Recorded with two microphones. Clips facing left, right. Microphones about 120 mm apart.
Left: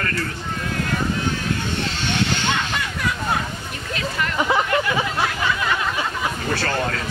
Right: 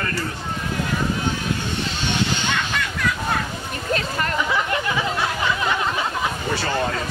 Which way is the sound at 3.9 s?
40° right (ahead or behind).